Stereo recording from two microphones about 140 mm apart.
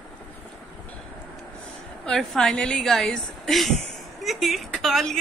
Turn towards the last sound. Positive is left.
turn(degrees=0)  # may be behind; listen again after turning